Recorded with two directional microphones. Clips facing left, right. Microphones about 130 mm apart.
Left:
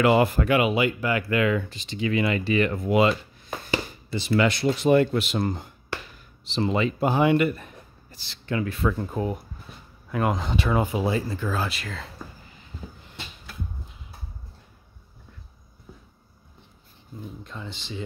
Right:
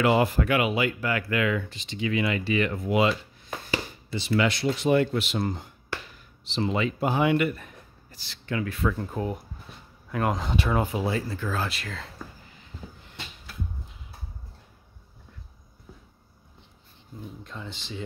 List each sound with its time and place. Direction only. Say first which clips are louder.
0.0 s speech: left 3 dB; 65° left (ahead or behind)
0.4 s speech: left 3 dB; 25° left (ahead or behind)
1.4 s speech: left 3 dB; 40° left (ahead or behind)
9.0 s speech: left 2 dB; 10° left (ahead or behind)
10.8 s speech: left 2 dB; 15° left (ahead or behind)
17.4 s speech: left 1 dB; centre (ahead or behind)